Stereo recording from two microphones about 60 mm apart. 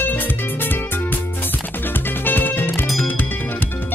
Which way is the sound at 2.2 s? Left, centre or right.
Left.